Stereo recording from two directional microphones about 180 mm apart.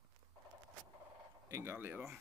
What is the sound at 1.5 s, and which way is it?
Speech, 10° right (ahead or behind).